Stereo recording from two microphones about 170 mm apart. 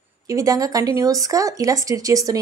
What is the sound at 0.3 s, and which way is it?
Speech, 20° right (ahead or behind).